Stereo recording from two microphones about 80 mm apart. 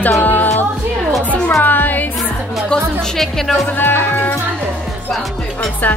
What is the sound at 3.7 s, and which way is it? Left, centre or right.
Speech, left.